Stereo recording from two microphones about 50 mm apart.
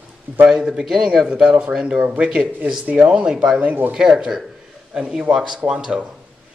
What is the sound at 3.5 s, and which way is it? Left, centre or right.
Speech, right.